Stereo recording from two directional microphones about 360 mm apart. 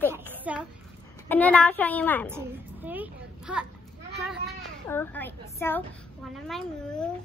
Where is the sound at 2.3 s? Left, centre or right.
Centre.